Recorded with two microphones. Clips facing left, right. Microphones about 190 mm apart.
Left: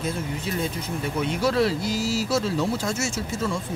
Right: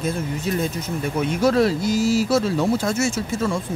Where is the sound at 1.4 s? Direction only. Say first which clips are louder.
Right 5 dB; 45° right (ahead or behind).